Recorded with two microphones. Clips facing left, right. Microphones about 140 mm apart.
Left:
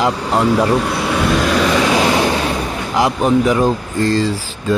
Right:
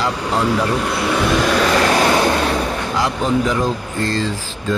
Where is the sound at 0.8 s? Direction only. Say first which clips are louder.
Left 1 dB; centre (ahead or behind).